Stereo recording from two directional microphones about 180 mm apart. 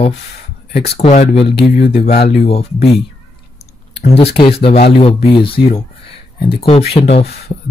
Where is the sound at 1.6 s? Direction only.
70° left (ahead or behind).